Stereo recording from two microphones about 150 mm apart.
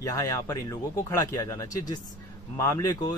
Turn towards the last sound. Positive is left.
turn(degrees=20)  # may be behind; listen again after turning